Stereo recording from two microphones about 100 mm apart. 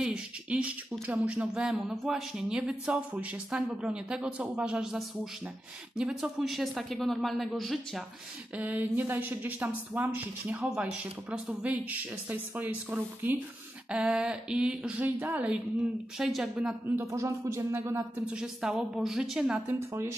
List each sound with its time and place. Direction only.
0.0 s a sound: 10° right (ahead or behind)
1.0 s speech: 15° right (ahead or behind)
8.5 s speech: 15° right (ahead or behind)
13.8 s speech: 10° right (ahead or behind)
16.9 s speech: 30° right (ahead or behind)
18.3 s speech: 5° right (ahead or behind)
19.7 s speech: 25° right (ahead or behind)